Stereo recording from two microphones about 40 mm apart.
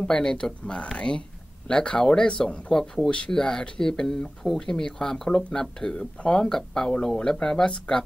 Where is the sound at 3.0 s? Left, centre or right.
Left.